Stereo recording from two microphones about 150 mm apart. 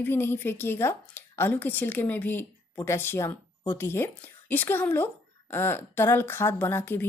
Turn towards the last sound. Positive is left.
turn(degrees=15)  # may be behind; listen again after turning